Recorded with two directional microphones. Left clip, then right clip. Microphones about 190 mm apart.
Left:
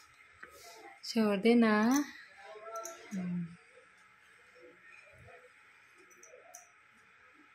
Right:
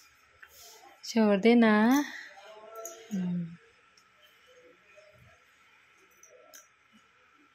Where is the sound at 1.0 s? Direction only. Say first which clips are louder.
Right 6 dB; 20° right (ahead or behind).